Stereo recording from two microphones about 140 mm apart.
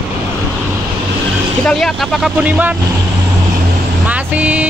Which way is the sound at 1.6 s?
5° left (ahead or behind).